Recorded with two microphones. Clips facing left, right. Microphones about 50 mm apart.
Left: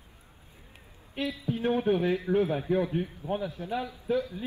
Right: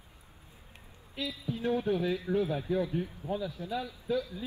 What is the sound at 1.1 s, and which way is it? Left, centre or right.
A man's voice, left.